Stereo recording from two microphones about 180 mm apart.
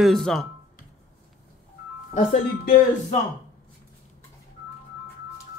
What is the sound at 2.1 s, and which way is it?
Speech, 35° left (ahead or behind).